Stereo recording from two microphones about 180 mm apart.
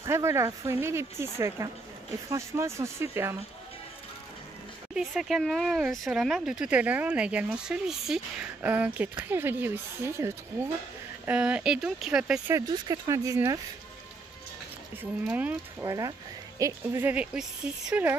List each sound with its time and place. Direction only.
0.0 s speech: 15° right (ahead or behind)
4.9 s speech: centre (ahead or behind)
12.5 s speech: 25° right (ahead or behind)
15.0 s speech: 10° right (ahead or behind)